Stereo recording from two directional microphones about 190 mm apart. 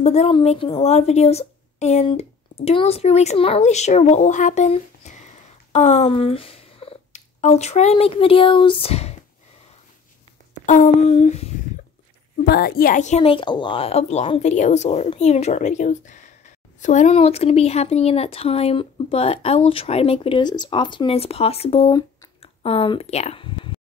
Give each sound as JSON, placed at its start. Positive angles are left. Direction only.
{"t": 0.0, "sound": "a woman's voice", "side_deg": 35}
{"t": 10.6, "sound": "speech", "side_deg": 40}
{"t": 12.4, "sound": "speech", "side_deg": 55}